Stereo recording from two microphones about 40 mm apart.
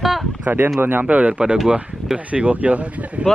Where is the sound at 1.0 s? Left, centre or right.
Right.